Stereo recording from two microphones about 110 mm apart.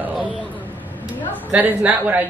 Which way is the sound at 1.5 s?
10° right (ahead or behind).